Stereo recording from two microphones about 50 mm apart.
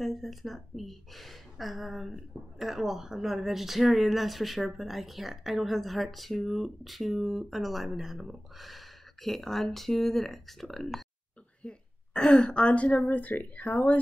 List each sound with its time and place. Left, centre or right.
0.0 s speech: centre
11.6 s speech: centre
13.1 s speech: left